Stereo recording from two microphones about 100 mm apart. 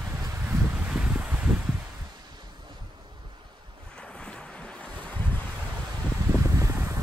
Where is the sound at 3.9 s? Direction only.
10° left (ahead or behind).